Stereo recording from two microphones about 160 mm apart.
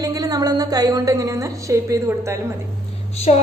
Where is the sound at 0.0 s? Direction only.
20° right (ahead or behind).